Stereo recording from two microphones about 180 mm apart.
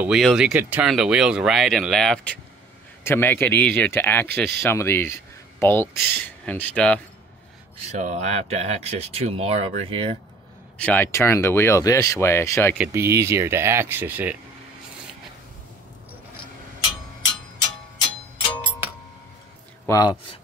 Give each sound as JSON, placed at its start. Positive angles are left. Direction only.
{"t": 0.0, "sound": "speech", "side_deg": 0}
{"t": 7.7, "sound": "speech", "side_deg": -40}
{"t": 10.8, "sound": "speech", "side_deg": 10}
{"t": 12.7, "sound": "speech", "side_deg": -10}
{"t": 19.9, "sound": "speech", "side_deg": 20}